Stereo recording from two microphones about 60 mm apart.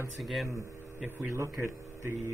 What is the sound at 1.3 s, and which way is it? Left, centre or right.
Speech, right.